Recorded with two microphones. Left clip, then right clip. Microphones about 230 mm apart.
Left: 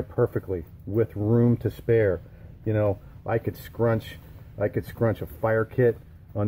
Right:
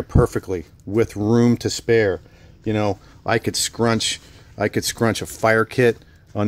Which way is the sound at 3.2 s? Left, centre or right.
Right.